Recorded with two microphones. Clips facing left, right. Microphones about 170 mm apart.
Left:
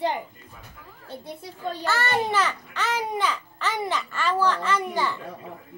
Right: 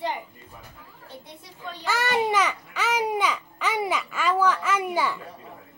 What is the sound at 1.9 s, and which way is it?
Speech, 10° right (ahead or behind).